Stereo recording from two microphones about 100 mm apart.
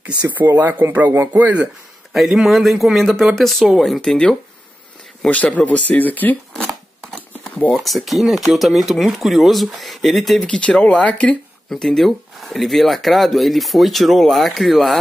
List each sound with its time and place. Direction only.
0.3 s speech: 20° right (ahead or behind)
2.1 s speech: centre (ahead or behind); by 6.3 s 15° left (ahead or behind)
7.3 s a sound: 15° left (ahead or behind)
7.8 s speech: centre (ahead or behind)